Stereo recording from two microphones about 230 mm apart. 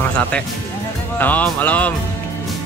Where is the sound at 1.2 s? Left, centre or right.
Centre.